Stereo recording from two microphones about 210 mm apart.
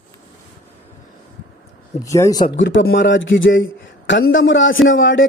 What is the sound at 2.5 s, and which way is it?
A man's voice, 60° left (ahead or behind).